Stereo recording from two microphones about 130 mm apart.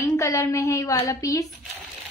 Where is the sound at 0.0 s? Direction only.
25° left (ahead or behind).